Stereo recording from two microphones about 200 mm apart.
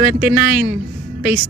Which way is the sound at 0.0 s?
40° right (ahead or behind).